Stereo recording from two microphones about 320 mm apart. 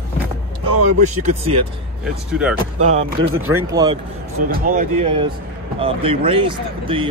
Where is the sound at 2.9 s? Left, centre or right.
Centre.